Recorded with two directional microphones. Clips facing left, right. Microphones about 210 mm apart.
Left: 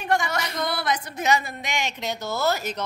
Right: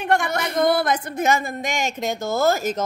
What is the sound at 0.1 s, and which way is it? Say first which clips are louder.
A woman's voice: right 3 dB; 55° right (ahead or behind).